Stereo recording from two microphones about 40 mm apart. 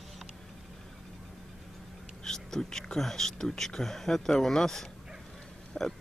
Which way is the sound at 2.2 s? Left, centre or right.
Centre.